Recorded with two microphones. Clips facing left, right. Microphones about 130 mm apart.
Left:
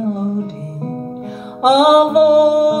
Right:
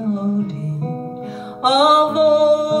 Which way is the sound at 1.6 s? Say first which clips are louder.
Left 4 dB; 55° left (ahead or behind).